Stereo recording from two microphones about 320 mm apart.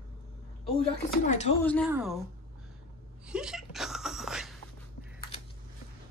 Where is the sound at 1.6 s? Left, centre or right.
Centre.